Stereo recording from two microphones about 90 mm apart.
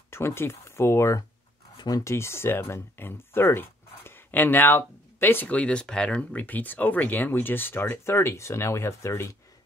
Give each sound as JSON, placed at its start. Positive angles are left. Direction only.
{"t": 0.1, "sound": "speech", "side_deg": 30}
{"t": 1.8, "sound": "speech", "side_deg": 45}
{"t": 2.1, "sound": "speech", "side_deg": 30}